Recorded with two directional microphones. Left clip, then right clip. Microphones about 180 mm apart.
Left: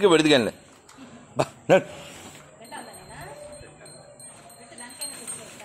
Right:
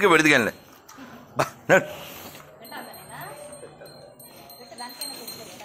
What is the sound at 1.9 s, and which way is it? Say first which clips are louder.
Speech: right 3 dB; 10° right (ahead or behind).